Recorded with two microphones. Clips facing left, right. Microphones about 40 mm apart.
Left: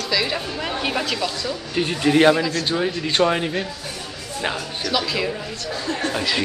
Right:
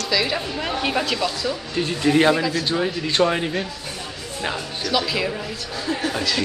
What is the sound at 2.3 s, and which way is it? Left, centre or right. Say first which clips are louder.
A woman's voice: left 1 dB; centre.